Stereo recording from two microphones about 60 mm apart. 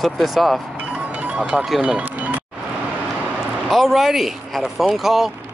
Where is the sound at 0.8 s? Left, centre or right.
Right.